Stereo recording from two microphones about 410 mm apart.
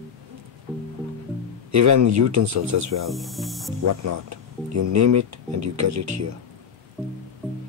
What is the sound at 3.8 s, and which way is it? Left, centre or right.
Speech, right.